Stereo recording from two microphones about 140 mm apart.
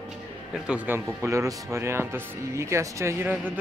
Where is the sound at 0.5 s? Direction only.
5° right (ahead or behind).